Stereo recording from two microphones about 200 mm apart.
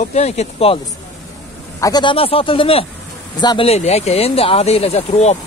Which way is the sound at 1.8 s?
20° left (ahead or behind).